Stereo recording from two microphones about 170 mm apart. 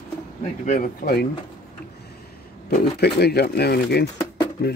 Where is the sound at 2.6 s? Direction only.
70° left (ahead or behind).